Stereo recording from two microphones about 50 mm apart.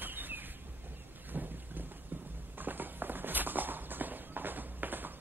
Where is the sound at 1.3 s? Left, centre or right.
Right.